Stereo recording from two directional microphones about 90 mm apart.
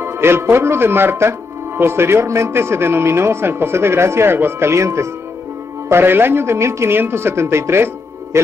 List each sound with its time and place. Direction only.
0.0 s speech: 30° right (ahead or behind)